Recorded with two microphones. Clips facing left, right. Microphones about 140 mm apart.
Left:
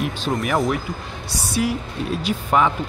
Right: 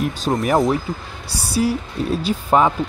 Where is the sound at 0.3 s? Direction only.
35° right (ahead or behind).